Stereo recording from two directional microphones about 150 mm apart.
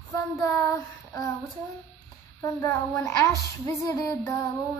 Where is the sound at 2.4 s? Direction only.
20° left (ahead or behind).